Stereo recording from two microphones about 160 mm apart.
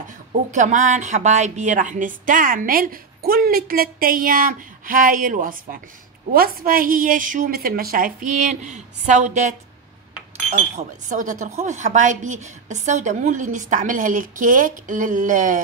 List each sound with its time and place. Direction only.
0.3 s a woman's voice: 50° right (ahead or behind)